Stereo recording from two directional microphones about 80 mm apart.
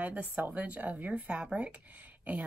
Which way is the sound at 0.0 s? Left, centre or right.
Centre.